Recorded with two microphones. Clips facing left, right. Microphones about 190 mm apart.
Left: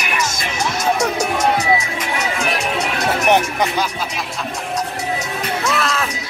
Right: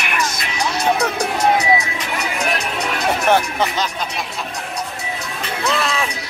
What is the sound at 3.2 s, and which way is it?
Music, 15° left (ahead or behind).